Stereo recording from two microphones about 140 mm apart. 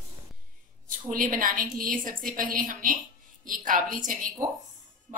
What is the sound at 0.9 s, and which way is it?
A woman's voice, 70° right (ahead or behind).